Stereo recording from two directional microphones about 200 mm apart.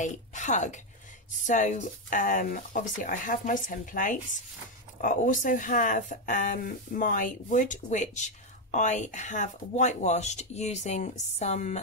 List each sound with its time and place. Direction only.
0.0 s a woman's voice: 40° left (ahead or behind)